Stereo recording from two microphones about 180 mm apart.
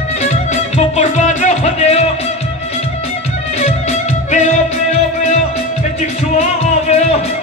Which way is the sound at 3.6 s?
35° left (ahead or behind).